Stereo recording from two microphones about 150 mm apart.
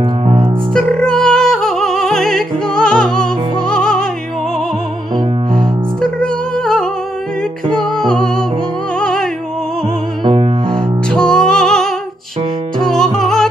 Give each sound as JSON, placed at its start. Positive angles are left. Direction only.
{"t": 0.0, "sound": "music", "side_deg": -40}
{"t": 0.7, "sound": "music", "side_deg": 5}
{"t": 5.1, "sound": "music", "side_deg": 5}
{"t": 8.1, "sound": "music", "side_deg": 5}
{"t": 10.2, "sound": "music", "side_deg": -40}
{"t": 10.7, "sound": "music", "side_deg": 5}